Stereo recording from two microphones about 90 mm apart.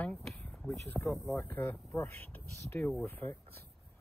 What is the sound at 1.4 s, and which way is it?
Speech, 20° left (ahead or behind).